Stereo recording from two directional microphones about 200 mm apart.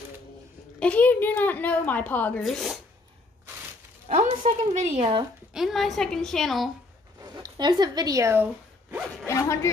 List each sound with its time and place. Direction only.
0.7 s a woman's voice: 5° left (ahead or behind)
4.1 s a woman's voice: 40° right (ahead or behind)
5.5 s a woman's voice: centre (ahead or behind)
7.2 s speech: 20° right (ahead or behind)
9.3 s a woman's voice: 15° left (ahead or behind)